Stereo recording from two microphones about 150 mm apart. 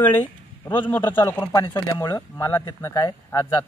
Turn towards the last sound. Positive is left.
turn(degrees=20)  # may be behind; listen again after turning